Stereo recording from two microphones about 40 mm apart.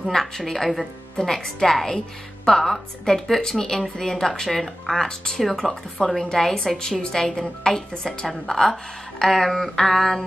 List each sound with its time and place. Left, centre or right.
0.0 s speech: centre
5.0 s speech: centre
6.0 s a woman's voice: left
6.3 s speech: centre